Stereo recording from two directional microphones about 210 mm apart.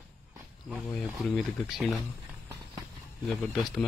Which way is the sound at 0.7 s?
Centre (ahead or behind).